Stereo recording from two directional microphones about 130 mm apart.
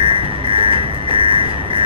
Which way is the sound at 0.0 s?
40° right (ahead or behind).